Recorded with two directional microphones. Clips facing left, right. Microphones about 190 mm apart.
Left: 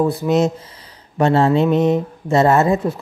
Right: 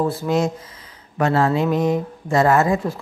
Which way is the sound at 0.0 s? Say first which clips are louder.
Left 4 dB; 15° left (ahead or behind).